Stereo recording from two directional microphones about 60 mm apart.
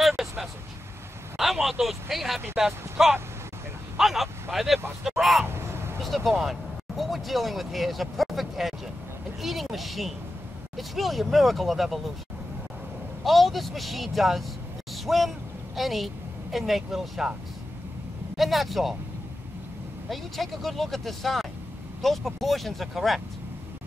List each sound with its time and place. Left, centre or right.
0.0 s vehicle: centre
1.4 s speech: centre
5.1 s a sound: centre
5.4 s a sound: right
6.0 s speech: centre
13.2 s speech: centre
18.3 s speech: centre
20.1 s speech: centre